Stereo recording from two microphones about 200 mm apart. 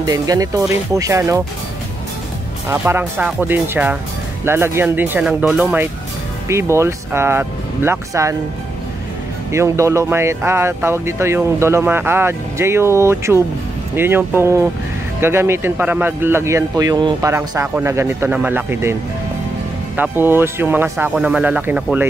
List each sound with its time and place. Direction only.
0.0 s speech: 20° right (ahead or behind)
2.7 s speech: 10° right (ahead or behind)
9.5 s speech: 15° right (ahead or behind)
20.0 s speech: 10° right (ahead or behind)